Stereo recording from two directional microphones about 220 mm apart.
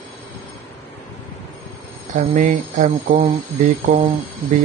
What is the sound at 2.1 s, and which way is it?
Speech, 35° right (ahead or behind).